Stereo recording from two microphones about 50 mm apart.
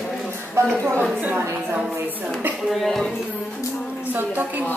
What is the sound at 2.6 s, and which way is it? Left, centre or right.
Speech, centre.